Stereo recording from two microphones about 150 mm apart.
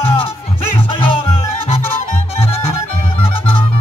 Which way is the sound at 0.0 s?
40° left (ahead or behind).